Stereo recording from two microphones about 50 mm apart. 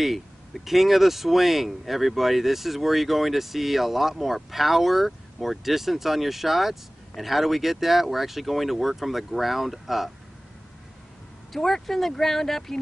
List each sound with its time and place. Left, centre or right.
0.7 s speech: centre
11.5 s speech: centre